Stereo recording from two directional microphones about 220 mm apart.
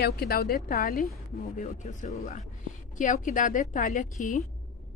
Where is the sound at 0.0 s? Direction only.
45° left (ahead or behind).